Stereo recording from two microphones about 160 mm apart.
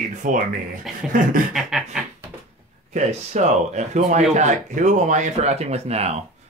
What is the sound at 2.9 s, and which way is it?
Speech, 45° right (ahead or behind).